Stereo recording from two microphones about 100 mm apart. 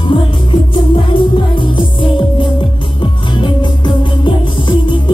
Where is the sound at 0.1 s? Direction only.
55° left (ahead or behind).